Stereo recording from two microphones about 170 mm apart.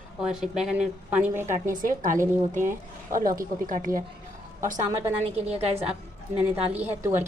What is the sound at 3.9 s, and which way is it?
Speech, 20° right (ahead or behind).